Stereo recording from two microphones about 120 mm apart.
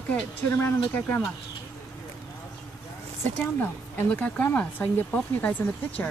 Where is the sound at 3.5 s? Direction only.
15° left (ahead or behind).